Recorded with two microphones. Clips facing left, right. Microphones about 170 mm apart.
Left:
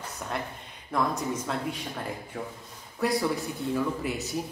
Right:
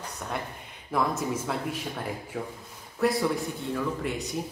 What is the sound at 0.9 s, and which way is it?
Speech, 5° right (ahead or behind).